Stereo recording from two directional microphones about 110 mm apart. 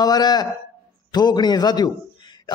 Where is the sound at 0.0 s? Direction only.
40° left (ahead or behind).